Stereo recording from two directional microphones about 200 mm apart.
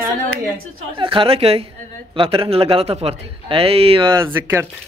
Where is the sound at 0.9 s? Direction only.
25° right (ahead or behind).